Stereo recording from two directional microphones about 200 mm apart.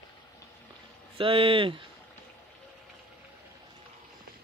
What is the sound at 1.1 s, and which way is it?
Speech, 25° right (ahead or behind).